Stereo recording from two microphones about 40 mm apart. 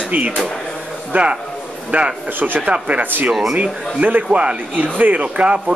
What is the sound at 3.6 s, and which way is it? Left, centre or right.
Speech, right.